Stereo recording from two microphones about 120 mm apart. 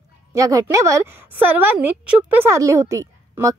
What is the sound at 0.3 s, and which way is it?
Speech, 25° right (ahead or behind).